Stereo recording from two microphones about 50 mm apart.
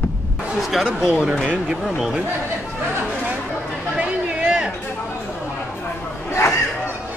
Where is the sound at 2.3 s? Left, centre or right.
Right.